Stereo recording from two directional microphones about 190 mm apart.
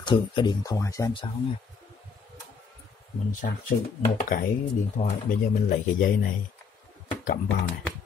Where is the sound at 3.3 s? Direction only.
45° left (ahead or behind).